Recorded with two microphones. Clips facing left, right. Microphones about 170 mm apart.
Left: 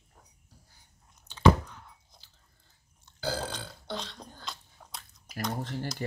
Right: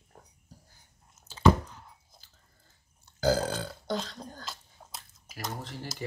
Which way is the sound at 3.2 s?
45° right (ahead or behind).